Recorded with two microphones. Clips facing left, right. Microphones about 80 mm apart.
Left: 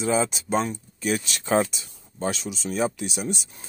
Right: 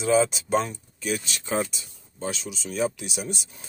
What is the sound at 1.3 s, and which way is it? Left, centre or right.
Speech, left.